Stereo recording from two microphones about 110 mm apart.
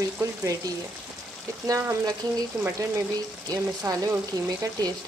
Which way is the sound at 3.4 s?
30° right (ahead or behind).